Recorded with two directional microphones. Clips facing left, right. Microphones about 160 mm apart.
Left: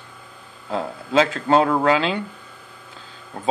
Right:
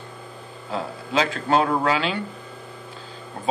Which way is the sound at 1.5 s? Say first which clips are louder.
Left 2 dB; 30° left (ahead or behind).